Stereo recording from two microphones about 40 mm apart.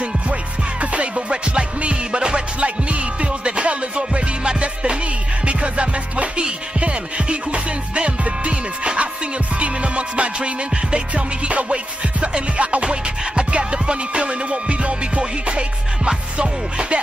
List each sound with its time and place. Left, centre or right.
0.0 s music: right